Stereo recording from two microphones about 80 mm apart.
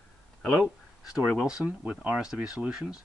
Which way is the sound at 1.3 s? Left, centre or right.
Centre.